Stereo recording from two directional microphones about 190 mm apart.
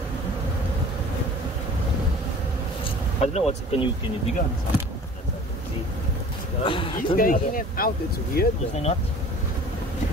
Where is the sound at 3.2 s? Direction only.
35° left (ahead or behind).